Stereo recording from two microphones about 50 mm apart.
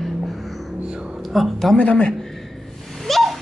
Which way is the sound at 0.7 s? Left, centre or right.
Centre.